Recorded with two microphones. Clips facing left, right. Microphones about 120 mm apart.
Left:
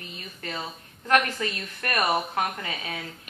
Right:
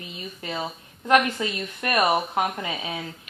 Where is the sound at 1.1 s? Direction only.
15° right (ahead or behind).